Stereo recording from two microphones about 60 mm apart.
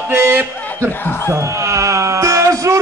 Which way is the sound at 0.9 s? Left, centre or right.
Left.